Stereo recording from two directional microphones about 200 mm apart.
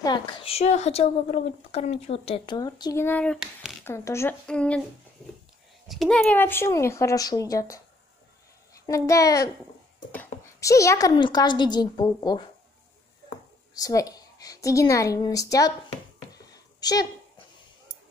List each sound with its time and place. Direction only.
0.0 s a woman's voice: 20° left (ahead or behind); by 3.7 s centre (ahead or behind)
3.8 s a woman's voice: 15° left (ahead or behind)
5.9 s a woman's voice: centre (ahead or behind); by 12.4 s 20° left (ahead or behind)
13.7 s a woman's voice: 20° left (ahead or behind)
16.5 s a sound: 20° left (ahead or behind)